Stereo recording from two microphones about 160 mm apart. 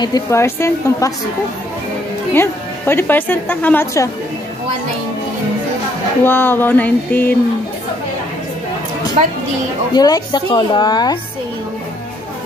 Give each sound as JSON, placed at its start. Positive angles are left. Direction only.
{"t": 0.0, "sound": "a woman's voice", "side_deg": 20}
{"t": 2.3, "sound": "a woman's voice", "side_deg": 15}
{"t": 6.2, "sound": "a woman's voice", "side_deg": 15}
{"t": 9.9, "sound": "a woman's voice", "side_deg": 25}